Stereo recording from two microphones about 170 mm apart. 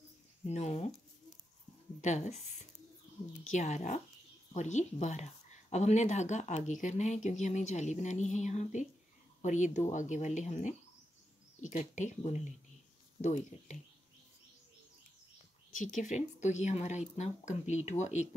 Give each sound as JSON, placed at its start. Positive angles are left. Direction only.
{"t": 0.5, "sound": "speech", "side_deg": 40}
{"t": 2.0, "sound": "speech", "side_deg": 45}
{"t": 15.7, "sound": "speech", "side_deg": 50}